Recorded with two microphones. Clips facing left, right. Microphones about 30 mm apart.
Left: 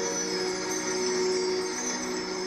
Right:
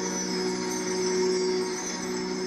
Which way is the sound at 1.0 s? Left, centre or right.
Centre.